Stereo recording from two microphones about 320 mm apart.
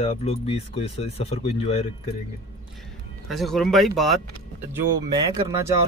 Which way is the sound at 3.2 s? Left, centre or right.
Centre.